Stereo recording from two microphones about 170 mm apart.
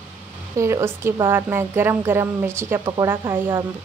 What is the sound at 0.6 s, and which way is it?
A woman's voice, 15° right (ahead or behind).